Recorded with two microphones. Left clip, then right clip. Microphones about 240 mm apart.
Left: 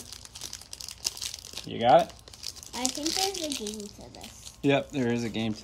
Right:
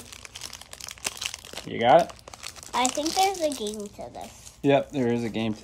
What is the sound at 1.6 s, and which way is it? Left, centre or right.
Crumpling, centre.